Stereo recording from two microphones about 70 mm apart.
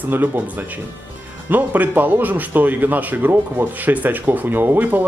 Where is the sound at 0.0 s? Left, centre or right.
Right.